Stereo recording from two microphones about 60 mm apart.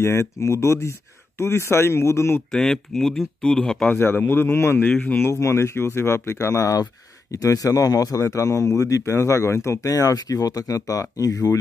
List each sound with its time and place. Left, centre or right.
0.0 s speech: left
2.5 s speech: centre
3.9 s a man's voice: left
5.3 s speech: left
6.3 s speech: left